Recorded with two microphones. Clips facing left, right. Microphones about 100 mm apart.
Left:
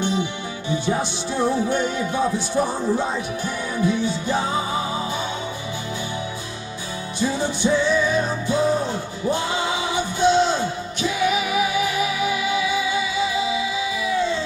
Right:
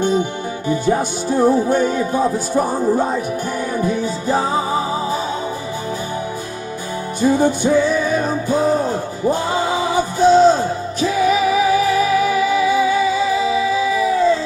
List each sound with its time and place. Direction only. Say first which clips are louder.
0.0 s music: right 6 dB; 45° right (ahead or behind)
7.2 s music: right 8 dB; 50° right (ahead or behind)